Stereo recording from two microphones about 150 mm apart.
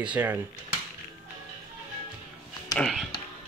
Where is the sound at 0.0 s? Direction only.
10° right (ahead or behind).